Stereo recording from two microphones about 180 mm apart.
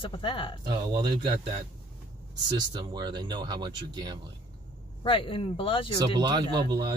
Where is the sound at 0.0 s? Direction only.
30° left (ahead or behind).